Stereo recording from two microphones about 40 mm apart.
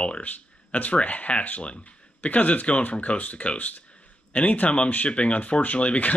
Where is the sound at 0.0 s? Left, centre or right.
Left.